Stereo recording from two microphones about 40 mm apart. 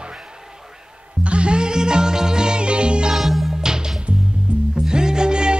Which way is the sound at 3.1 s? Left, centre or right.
Centre.